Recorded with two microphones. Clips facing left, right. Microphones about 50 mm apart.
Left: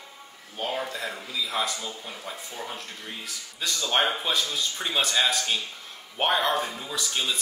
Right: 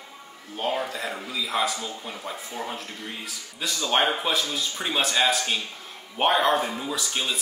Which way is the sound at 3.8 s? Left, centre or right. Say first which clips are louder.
Right 2 dB; centre.